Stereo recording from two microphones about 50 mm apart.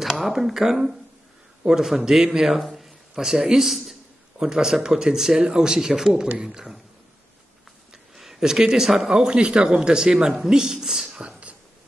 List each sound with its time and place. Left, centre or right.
0.0 s a man's voice: centre
8.2 s a man's voice: centre
9.1 s speech: centre
11.2 s a sound: right